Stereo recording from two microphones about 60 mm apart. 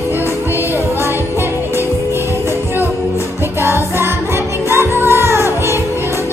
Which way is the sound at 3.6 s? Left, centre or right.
Right.